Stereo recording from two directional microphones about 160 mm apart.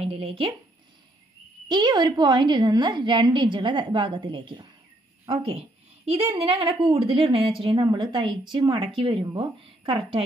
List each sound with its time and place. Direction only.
0.0 s speech: 35° right (ahead or behind)
1.7 s a woman's voice: 25° right (ahead or behind)